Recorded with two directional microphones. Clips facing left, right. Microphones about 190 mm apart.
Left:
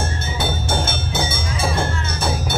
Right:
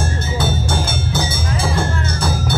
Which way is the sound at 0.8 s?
20° left (ahead or behind).